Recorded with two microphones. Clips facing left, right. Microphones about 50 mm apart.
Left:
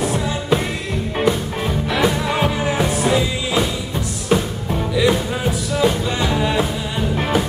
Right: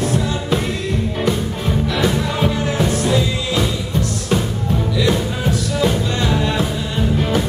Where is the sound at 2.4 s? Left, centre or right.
Centre.